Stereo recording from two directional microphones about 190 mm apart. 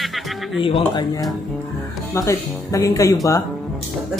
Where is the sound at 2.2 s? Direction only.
15° left (ahead or behind).